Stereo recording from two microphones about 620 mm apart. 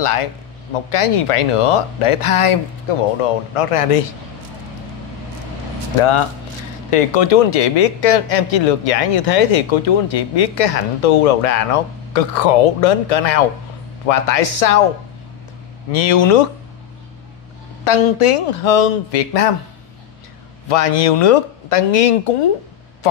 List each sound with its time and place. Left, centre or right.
0.0 s speech: left
5.9 s speech: left
15.9 s speech: left
17.8 s speech: left
20.6 s speech: left